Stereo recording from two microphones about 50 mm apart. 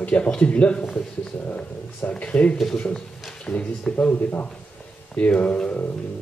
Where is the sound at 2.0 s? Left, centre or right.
Left.